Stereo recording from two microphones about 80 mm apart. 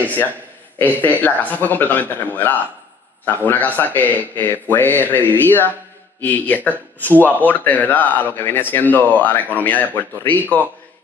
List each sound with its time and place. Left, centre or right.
1.0 s a man's voice: left